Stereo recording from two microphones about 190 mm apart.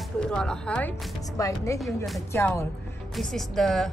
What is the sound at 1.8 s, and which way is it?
Speech, centre (ahead or behind).